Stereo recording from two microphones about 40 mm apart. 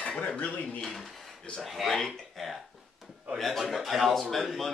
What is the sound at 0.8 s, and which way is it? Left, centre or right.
A man's voice, centre.